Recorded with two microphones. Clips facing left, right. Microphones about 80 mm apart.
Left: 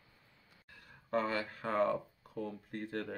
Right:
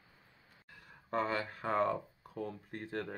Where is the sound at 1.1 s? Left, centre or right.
Centre.